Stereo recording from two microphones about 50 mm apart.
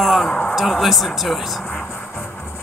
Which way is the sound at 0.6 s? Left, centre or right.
Centre.